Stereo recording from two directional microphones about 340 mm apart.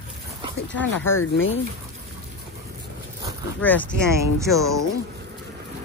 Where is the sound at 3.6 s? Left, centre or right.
Centre.